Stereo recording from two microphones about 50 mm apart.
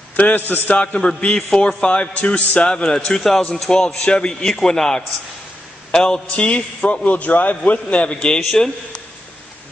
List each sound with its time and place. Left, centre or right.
0.1 s a man's voice: left
8.4 s a man's voice: centre